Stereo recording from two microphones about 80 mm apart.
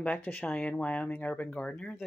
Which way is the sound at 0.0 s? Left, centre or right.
Left.